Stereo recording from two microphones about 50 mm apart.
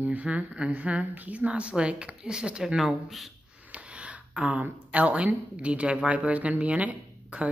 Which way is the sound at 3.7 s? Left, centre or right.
Right.